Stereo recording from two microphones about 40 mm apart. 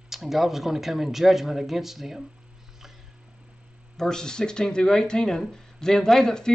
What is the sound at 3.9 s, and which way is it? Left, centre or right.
Speech, centre.